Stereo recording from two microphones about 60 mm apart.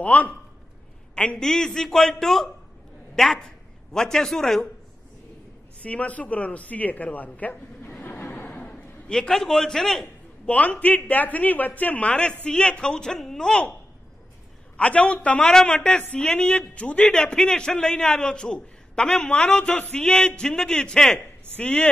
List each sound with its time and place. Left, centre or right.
0.0 s a woman's voice: left; by 4.6 s centre
5.8 s a woman's voice: left
8.0 s a sound: left; by 9.3 s centre
9.3 s a man's voice: centre
10.4 s a woman's voice: left
12.1 s a man's voice: centre
14.8 s a man's voice: centre
21.5 s a woman's voice: left